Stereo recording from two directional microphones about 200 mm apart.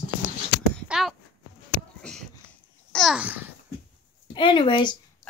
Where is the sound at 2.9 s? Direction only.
Centre (ahead or behind).